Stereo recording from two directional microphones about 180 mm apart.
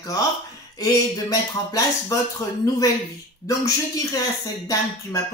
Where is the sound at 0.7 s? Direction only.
20° left (ahead or behind).